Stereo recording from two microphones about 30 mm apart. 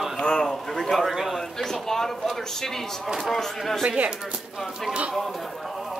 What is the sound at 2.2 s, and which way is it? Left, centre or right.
A man's voice, centre.